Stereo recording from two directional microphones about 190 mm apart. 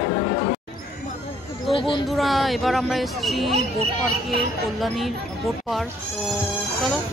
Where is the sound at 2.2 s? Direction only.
Centre (ahead or behind).